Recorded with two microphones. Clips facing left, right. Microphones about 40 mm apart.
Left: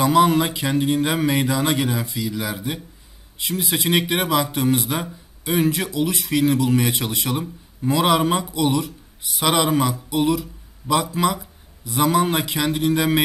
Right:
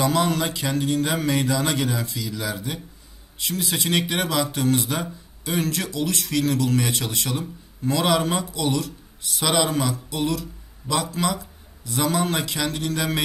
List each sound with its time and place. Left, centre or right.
0.0 s a man's voice: centre